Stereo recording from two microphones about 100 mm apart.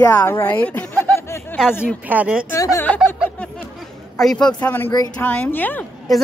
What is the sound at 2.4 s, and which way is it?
Speech, 30° left (ahead or behind).